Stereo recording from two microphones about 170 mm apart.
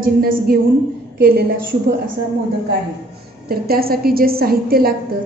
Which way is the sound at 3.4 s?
65° right (ahead or behind).